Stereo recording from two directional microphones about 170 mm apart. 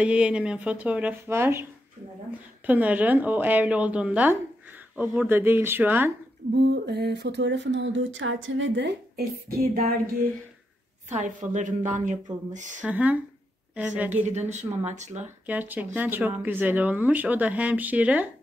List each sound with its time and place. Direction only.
0.0 s speech: 5° right (ahead or behind)
6.5 s a sound: 75° right (ahead or behind)
8.6 s a woman's voice: 90° right; by 9.9 s 60° right (ahead or behind)
11.1 s a woman's voice: 45° right (ahead or behind)
12.8 s speech: 10° right (ahead or behind)
14.1 s a woman's voice: 40° right (ahead or behind)
15.4 s speech: 10° right (ahead or behind)